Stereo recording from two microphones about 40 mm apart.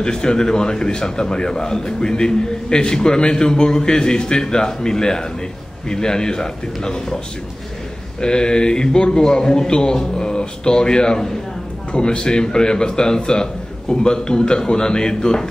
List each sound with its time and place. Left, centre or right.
0.0 s a man's voice: centre
8.2 s a man's voice: left